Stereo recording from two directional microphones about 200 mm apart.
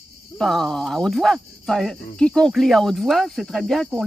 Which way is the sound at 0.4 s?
Centre (ahead or behind).